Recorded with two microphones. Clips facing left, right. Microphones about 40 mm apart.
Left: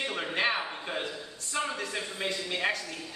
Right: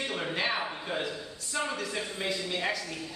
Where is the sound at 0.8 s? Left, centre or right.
Centre.